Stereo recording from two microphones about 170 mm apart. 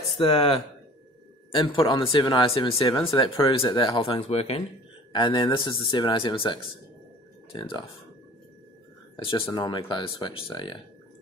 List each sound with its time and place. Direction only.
0.2 s speech: 35° left (ahead or behind)
9.1 s speech: 30° left (ahead or behind)